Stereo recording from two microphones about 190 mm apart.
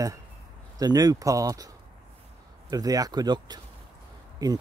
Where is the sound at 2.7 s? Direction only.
20° right (ahead or behind).